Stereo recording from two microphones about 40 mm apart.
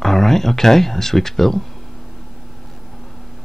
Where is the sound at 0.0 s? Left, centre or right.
Centre.